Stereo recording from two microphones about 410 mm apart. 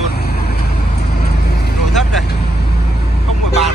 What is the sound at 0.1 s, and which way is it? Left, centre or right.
Vehicle, left.